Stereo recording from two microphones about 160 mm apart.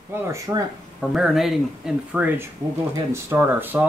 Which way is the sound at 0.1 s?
20° right (ahead or behind).